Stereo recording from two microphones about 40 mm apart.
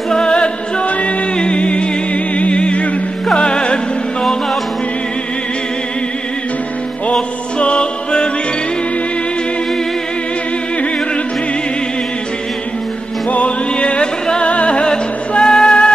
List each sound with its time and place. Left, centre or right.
0.1 s music: left
7.2 s music: left
13.3 s music: left
15.4 s music: centre